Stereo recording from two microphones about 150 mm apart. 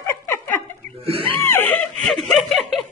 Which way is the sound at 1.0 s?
40° right (ahead or behind).